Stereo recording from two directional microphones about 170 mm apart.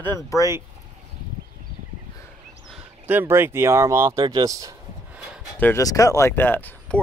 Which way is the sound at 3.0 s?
15° right (ahead or behind).